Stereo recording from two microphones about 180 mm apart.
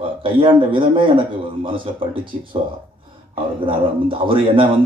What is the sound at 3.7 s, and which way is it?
Speech, 30° right (ahead or behind).